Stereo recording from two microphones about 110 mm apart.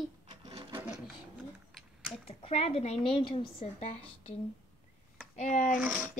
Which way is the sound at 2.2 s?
65° left (ahead or behind).